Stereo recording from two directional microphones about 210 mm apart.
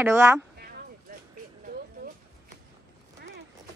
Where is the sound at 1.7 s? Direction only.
50° right (ahead or behind).